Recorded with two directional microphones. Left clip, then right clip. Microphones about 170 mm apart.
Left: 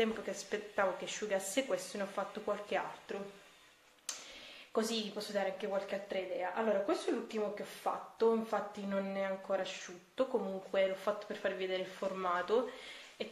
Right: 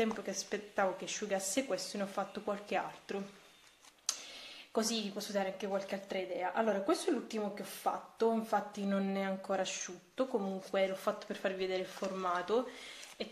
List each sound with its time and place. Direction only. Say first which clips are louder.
0.0 s a woman's voice: even; 20° right (ahead or behind)
4.7 s a woman's voice: even; 20° right (ahead or behind)